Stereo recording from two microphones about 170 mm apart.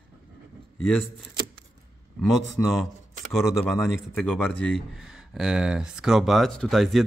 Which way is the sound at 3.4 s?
Centre (ahead or behind).